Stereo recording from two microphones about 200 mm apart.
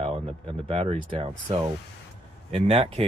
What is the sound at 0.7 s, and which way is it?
Speech, 30° right (ahead or behind).